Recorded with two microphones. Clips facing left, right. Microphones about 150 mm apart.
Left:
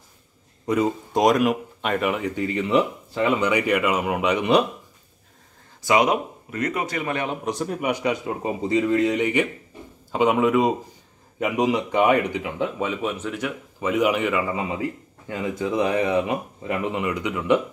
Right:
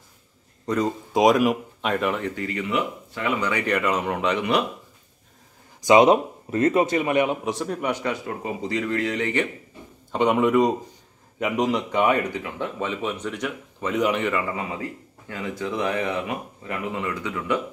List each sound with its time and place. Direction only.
0.7 s speech: 5° left (ahead or behind)
2.3 s speech: 25° left (ahead or behind)
5.8 s speech: 20° right (ahead or behind)
7.4 s speech: centre (ahead or behind)
10.1 s speech: centre (ahead or behind); by 17.6 s 15° left (ahead or behind)